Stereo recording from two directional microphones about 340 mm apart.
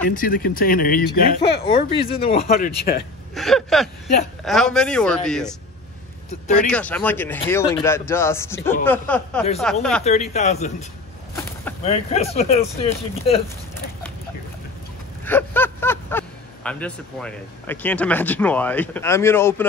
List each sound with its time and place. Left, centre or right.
0.1 s speech: left
3.3 s speech: centre
6.7 s speech: centre
10.0 s speech: centre
15.2 s speech: centre